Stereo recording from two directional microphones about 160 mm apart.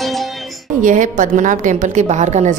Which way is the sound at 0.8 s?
55° right (ahead or behind).